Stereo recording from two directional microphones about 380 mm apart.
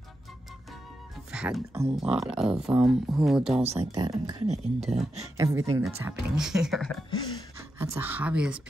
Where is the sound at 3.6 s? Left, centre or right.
Centre.